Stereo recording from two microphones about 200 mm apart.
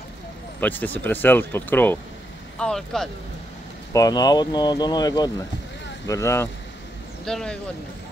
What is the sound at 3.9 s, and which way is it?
Speech, 20° left (ahead or behind).